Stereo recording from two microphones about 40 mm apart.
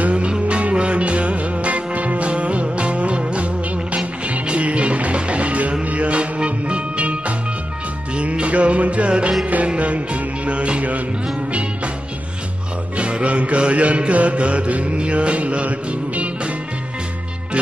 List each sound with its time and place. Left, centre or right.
0.0 s music: right
12.9 s music: right